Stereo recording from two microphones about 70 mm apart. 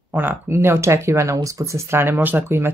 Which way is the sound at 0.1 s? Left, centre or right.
Right.